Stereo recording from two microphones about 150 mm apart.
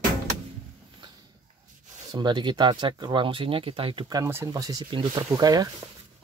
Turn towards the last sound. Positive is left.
turn(degrees=-25)  # may be behind; listen again after turning